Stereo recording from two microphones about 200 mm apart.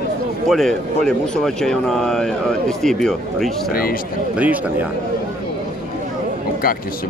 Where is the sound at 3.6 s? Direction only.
50° left (ahead or behind).